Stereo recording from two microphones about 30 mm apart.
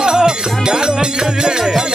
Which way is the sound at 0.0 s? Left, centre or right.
Right.